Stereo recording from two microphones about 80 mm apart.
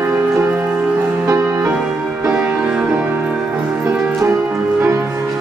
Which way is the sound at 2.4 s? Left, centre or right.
Right.